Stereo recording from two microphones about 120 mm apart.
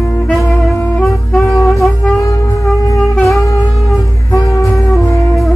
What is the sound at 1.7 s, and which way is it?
Wind instrument, centre (ahead or behind).